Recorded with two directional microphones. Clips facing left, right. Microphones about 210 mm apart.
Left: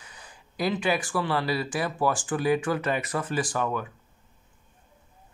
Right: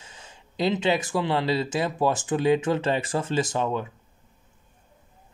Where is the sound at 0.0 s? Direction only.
25° right (ahead or behind).